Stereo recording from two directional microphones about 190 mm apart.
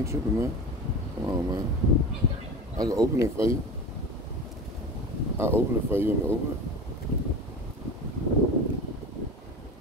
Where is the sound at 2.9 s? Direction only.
15° right (ahead or behind).